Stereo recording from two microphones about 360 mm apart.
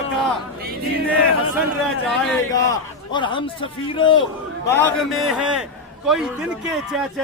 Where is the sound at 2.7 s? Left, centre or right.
Centre.